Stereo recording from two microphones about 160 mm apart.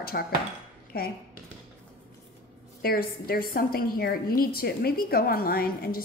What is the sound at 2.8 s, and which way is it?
A woman's voice, 70° left (ahead or behind).